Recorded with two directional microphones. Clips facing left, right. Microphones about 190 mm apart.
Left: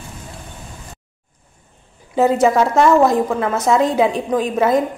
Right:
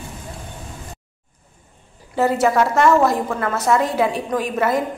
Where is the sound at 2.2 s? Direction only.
15° left (ahead or behind).